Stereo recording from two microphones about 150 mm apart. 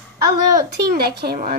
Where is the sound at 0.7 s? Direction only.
90° right.